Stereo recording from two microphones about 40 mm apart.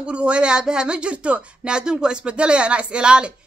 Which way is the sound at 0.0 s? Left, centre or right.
Right.